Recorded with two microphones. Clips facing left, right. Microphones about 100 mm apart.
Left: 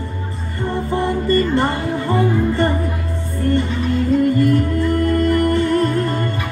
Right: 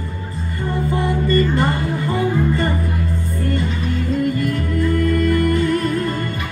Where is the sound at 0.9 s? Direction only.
35° left (ahead or behind).